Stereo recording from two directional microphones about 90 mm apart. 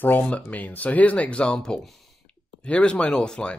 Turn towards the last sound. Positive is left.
turn(degrees=10)  # may be behind; listen again after turning